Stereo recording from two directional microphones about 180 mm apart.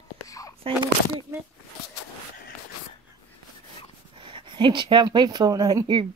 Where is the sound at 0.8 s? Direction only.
25° right (ahead or behind).